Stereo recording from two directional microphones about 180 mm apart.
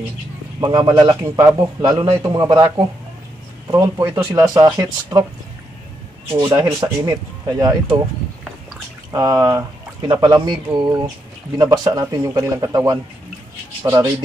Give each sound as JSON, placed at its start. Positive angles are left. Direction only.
{"t": 0.6, "sound": "speech", "side_deg": -20}
{"t": 6.5, "sound": "speech", "side_deg": -15}
{"t": 9.1, "sound": "speech", "side_deg": -20}
{"t": 13.8, "sound": "rub", "side_deg": -15}